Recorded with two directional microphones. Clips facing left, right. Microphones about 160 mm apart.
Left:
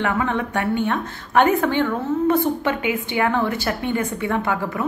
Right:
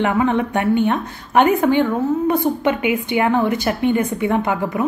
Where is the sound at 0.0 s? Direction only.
20° right (ahead or behind).